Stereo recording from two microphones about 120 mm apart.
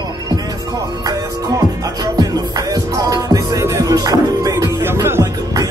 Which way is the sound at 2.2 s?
30° right (ahead or behind).